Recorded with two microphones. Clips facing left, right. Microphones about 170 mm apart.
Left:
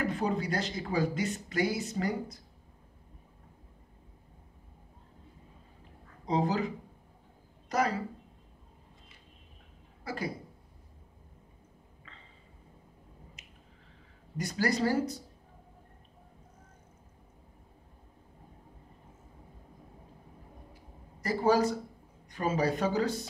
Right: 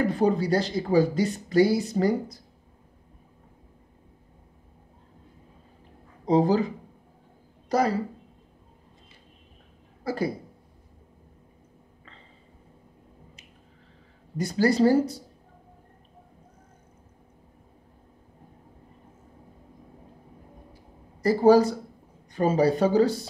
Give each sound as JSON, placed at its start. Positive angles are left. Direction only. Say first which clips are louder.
{"t": 0.0, "sound": "speech", "louder": "right 8 dB", "side_deg": -35}
{"t": 6.2, "sound": "speech", "louder": "right 8 dB", "side_deg": -35}
{"t": 7.7, "sound": "speech", "louder": "right 6 dB", "side_deg": -35}
{"t": 10.0, "sound": "speech", "louder": "right 8 dB", "side_deg": -35}
{"t": 14.3, "sound": "speech", "louder": "right 8 dB", "side_deg": -30}
{"t": 21.2, "sound": "speech", "louder": "right 9 dB", "side_deg": -35}